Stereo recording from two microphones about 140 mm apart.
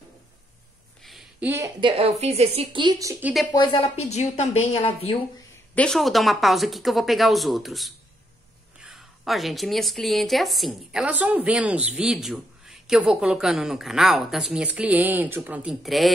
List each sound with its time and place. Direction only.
1.4 s a woman's voice: 20° right (ahead or behind)
1.8 s speech: 40° right (ahead or behind)
3.5 s a woman's voice: 35° left (ahead or behind)
5.8 s a woman's voice: 5° left (ahead or behind)